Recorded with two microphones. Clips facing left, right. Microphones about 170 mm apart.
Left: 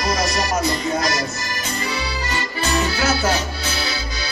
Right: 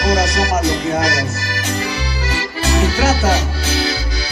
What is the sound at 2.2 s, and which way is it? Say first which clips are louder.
Music: right 4 dB; 85° right.